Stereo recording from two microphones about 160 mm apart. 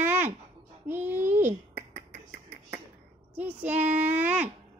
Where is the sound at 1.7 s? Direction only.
45° right (ahead or behind).